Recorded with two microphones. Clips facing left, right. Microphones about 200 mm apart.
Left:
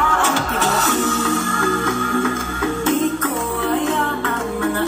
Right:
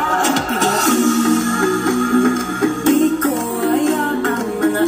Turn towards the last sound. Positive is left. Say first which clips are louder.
# right 5 dB
turn(degrees=-45)  # may be behind; listen again after turning